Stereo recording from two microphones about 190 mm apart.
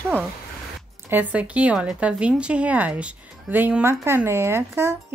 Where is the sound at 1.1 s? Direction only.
10° right (ahead or behind).